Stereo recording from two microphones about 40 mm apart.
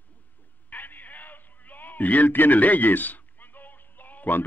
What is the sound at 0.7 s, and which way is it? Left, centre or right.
A man's voice, left.